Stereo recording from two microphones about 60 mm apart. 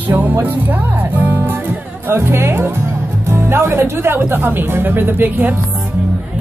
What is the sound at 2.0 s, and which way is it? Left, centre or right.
Speech, right.